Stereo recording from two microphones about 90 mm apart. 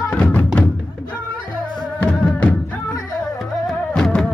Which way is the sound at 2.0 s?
10° left (ahead or behind).